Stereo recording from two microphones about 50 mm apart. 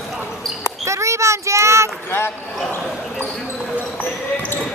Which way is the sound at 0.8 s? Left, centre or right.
Right.